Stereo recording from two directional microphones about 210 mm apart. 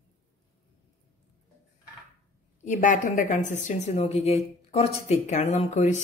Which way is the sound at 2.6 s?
35° left (ahead or behind).